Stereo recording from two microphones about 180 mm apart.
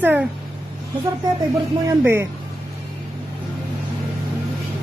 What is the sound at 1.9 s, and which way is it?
Speech, 15° right (ahead or behind).